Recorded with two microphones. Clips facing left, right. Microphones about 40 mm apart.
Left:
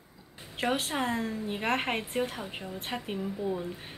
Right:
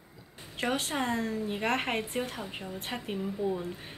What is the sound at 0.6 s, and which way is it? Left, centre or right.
A woman's voice, centre.